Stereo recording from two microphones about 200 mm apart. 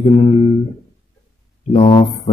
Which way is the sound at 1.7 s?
30° left (ahead or behind).